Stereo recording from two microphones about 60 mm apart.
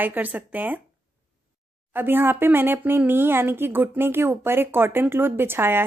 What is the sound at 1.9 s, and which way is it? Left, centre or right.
Speech, right.